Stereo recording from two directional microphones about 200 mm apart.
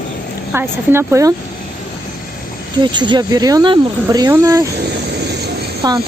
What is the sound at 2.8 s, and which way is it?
Speech, 20° right (ahead or behind).